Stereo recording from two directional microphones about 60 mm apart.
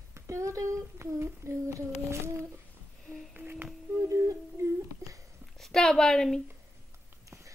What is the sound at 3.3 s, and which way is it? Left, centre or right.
Music, right.